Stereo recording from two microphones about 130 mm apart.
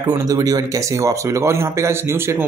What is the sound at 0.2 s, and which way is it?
Speech, 30° right (ahead or behind).